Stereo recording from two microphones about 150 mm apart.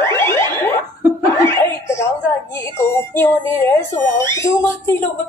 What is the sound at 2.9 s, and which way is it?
Speech, 15° left (ahead or behind).